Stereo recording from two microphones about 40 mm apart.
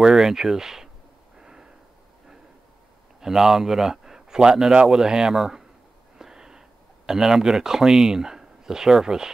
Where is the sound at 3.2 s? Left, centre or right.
Centre.